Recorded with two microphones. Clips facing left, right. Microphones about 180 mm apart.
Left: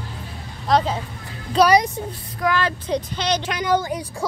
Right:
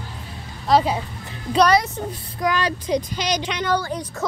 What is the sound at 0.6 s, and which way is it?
Speech, 10° right (ahead or behind).